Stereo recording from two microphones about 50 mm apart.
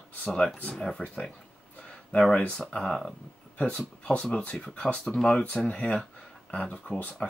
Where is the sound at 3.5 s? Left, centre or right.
Left.